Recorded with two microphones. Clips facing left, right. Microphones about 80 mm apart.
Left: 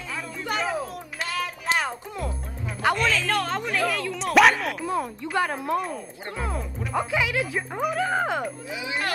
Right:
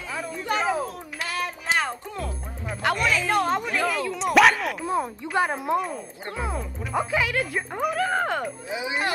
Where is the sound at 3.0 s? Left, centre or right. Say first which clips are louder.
Right 1 dB; centre.